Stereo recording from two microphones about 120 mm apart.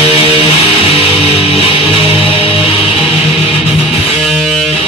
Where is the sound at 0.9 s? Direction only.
55° left (ahead or behind).